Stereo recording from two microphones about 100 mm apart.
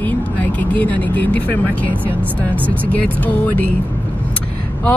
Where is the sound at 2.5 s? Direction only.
20° right (ahead or behind).